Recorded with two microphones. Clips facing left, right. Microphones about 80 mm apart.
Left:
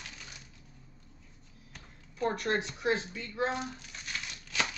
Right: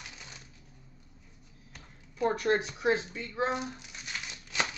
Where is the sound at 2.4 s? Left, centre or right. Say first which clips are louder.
Right 4 dB; centre.